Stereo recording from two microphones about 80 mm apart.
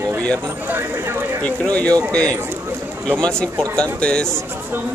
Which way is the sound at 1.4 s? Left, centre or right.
Centre.